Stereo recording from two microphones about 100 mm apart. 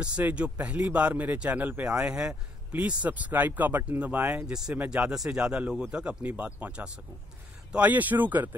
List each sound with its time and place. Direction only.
0.0 s speech: 10° right (ahead or behind)